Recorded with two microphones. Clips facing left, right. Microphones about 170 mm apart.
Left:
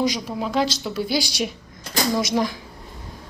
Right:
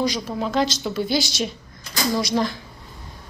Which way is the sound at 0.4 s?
5° left (ahead or behind).